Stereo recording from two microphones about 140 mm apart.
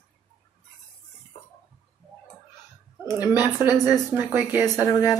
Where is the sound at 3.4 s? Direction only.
10° right (ahead or behind).